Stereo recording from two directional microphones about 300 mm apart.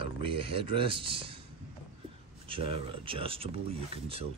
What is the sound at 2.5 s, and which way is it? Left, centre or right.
Speech, centre.